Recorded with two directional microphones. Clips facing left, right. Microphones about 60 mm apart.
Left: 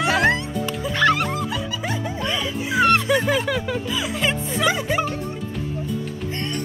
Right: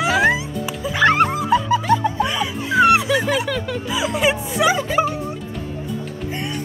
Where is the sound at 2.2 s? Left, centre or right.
Centre.